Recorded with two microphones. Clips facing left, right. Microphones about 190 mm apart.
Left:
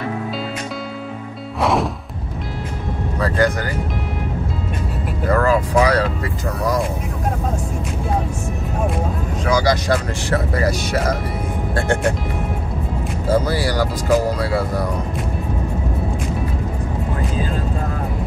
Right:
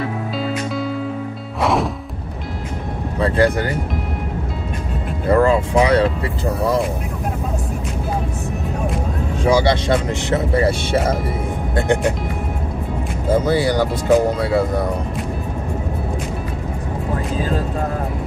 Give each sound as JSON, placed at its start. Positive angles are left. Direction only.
{"t": 1.6, "sound": "music", "side_deg": 0}
{"t": 3.2, "sound": "speech", "side_deg": -30}
{"t": 5.3, "sound": "speech", "side_deg": -25}
{"t": 9.5, "sound": "speech", "side_deg": -25}
{"t": 13.3, "sound": "speech", "side_deg": -20}